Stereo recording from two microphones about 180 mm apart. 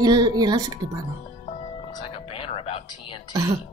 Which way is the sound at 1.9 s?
30° left (ahead or behind).